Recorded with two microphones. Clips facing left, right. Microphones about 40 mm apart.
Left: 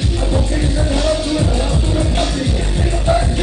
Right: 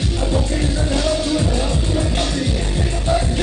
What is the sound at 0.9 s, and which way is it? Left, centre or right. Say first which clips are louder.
Music: left 2 dB; centre.